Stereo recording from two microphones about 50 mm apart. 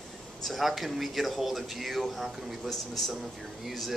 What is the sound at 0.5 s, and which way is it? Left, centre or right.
A man's voice, centre.